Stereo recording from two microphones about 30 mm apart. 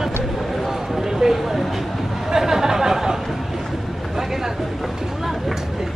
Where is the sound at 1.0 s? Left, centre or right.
Centre.